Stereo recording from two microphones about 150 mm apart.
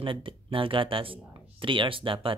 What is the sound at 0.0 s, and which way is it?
Speech, 35° right (ahead or behind).